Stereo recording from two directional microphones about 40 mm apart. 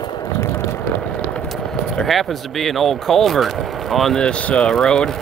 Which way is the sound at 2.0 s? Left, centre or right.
Centre.